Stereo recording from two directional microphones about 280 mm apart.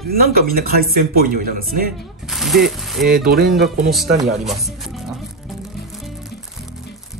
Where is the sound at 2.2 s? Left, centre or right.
Centre.